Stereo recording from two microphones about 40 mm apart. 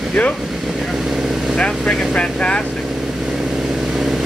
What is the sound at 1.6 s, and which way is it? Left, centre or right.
Speech, centre.